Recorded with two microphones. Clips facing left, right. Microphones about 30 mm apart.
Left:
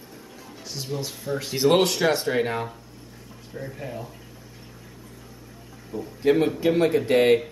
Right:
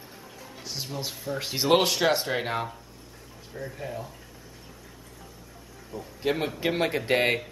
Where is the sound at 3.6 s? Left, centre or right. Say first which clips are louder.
Even; centre.